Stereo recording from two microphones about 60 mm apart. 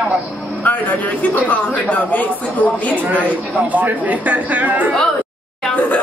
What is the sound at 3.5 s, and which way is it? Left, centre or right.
Speech, right.